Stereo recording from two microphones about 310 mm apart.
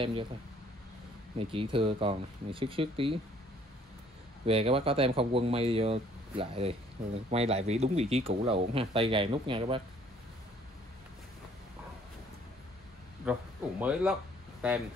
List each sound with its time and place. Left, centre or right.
0.0 s speech: centre
1.5 s speech: centre
4.5 s speech: centre
13.2 s speech: centre